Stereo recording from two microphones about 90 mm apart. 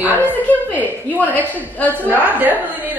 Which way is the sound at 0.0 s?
20° right (ahead or behind).